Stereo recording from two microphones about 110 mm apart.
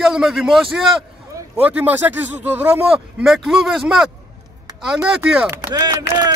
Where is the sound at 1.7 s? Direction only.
15° right (ahead or behind).